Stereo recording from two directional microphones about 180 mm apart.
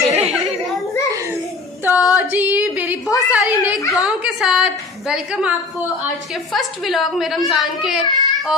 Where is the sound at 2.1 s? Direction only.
10° right (ahead or behind).